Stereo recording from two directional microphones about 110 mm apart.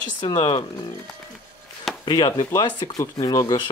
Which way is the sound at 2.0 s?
40° left (ahead or behind).